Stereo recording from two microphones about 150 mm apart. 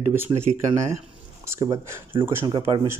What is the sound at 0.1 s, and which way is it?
Speech, 15° right (ahead or behind).